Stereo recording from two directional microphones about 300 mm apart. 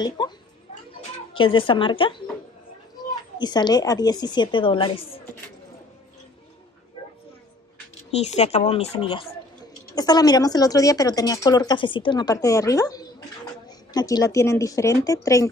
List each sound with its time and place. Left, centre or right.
0.2 s a sound: centre
1.4 s speech: centre
3.3 s speech: centre
8.1 s speech: left